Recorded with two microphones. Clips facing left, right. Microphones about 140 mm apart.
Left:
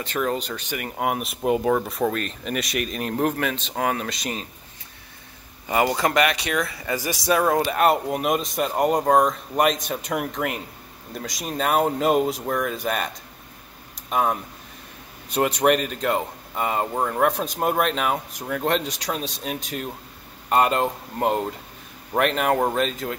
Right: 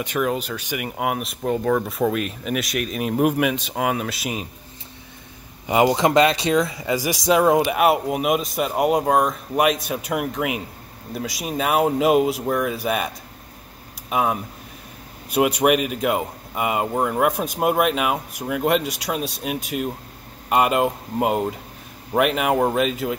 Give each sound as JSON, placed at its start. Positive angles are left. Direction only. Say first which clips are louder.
{"t": 0.0, "sound": "speech", "louder": "right 2 dB", "side_deg": -10}
{"t": 5.7, "sound": "speech", "louder": "right 4 dB", "side_deg": -20}